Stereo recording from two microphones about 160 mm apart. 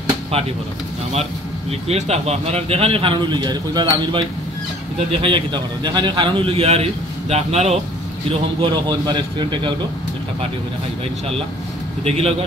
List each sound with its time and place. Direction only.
1.7 s a man's voice: 40° right (ahead or behind)
8.3 s a man's voice: 30° right (ahead or behind)
12.0 s a man's voice: 40° right (ahead or behind)